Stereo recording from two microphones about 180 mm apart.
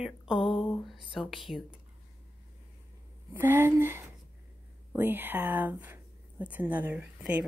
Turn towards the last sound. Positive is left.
turn(degrees=-10)  # may be behind; listen again after turning